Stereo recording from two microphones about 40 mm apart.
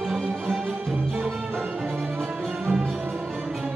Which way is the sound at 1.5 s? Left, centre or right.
Right.